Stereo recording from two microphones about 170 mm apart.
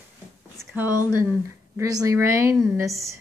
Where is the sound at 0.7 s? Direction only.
10° right (ahead or behind).